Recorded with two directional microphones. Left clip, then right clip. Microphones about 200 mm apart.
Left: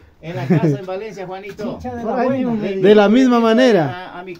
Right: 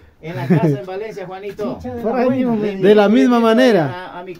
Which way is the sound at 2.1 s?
35° right (ahead or behind).